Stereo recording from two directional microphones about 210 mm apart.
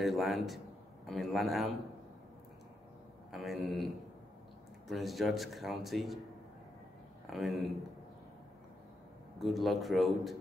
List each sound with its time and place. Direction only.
0.0 s speech: centre (ahead or behind)
3.3 s speech: centre (ahead or behind)
7.2 s speech: centre (ahead or behind)
9.4 s speech: centre (ahead or behind)